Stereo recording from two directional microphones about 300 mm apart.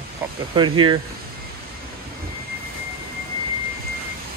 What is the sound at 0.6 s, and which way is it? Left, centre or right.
Speech, centre.